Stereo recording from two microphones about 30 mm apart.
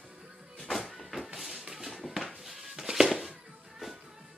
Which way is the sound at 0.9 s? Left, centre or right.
Centre.